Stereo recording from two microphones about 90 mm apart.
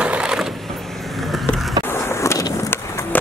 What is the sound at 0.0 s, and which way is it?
Vehicle, 10° right (ahead or behind).